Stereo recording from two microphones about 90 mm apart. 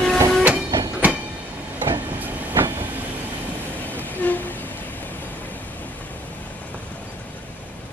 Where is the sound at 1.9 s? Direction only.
20° right (ahead or behind).